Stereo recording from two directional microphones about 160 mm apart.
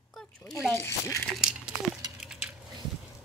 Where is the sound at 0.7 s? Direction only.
15° left (ahead or behind).